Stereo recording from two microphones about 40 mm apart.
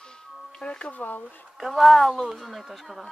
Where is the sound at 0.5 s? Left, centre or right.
Left.